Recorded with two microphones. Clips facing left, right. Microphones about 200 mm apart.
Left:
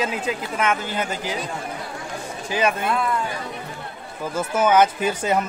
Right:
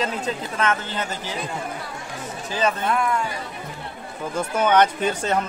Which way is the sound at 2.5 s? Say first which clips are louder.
Left 1 dB; 10° left (ahead or behind).